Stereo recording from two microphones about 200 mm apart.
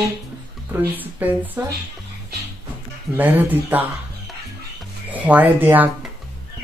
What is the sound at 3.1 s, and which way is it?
Speech, 10° right (ahead or behind).